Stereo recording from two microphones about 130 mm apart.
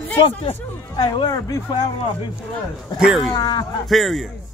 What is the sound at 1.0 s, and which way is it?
Speech, 35° left (ahead or behind).